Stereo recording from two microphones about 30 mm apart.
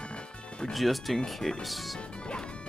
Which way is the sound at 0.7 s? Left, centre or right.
Centre.